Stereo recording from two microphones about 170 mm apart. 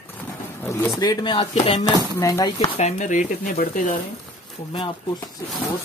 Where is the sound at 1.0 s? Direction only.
25° left (ahead or behind).